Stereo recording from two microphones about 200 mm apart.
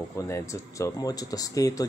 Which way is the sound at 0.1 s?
15° left (ahead or behind).